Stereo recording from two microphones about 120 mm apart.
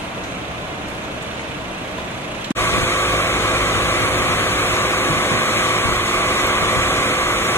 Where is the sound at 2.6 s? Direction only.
20° left (ahead or behind).